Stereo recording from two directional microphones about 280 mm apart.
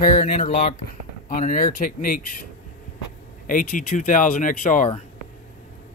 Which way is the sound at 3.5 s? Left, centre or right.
Left.